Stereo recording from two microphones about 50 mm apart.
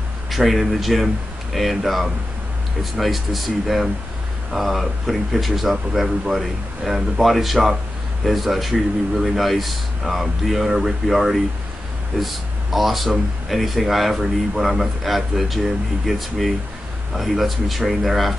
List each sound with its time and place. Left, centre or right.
0.3 s speech: centre